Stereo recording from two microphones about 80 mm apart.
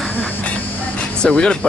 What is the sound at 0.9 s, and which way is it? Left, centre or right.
Speech, centre.